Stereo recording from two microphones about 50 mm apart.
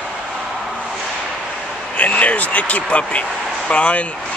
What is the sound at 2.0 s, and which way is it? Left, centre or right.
Speech, left.